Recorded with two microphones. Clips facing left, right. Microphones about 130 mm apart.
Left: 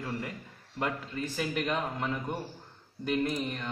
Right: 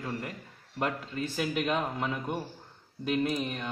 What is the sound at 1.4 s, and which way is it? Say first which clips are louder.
A man's voice: right 2 dB; 5° right (ahead or behind).